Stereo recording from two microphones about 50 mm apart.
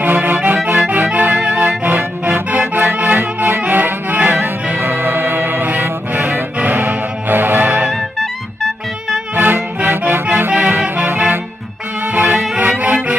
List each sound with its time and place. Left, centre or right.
0.0 s music: right
5.7 s music: right
9.3 s music: right